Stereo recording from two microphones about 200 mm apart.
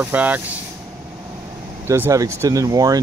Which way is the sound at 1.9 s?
15° right (ahead or behind).